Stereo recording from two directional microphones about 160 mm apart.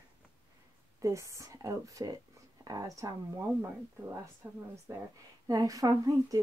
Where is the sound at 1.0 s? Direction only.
20° right (ahead or behind).